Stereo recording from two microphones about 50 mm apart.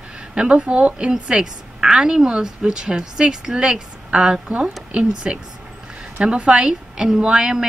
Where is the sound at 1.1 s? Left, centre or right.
Centre.